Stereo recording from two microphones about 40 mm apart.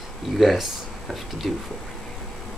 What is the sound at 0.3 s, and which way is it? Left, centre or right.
A man's voice, centre.